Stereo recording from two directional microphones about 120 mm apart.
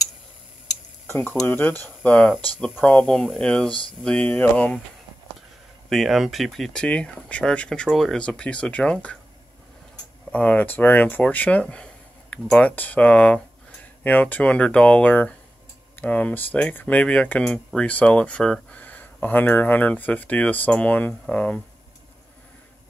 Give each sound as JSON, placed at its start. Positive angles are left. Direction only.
{"t": 1.0, "sound": "speech", "side_deg": 20}
{"t": 5.9, "sound": "speech", "side_deg": 0}
{"t": 10.3, "sound": "speech", "side_deg": 10}